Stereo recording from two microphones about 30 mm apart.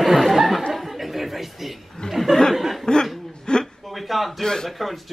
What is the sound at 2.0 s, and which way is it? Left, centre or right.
Chuckle, left.